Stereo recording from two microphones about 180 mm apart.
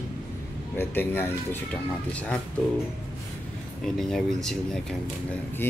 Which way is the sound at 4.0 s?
Centre (ahead or behind).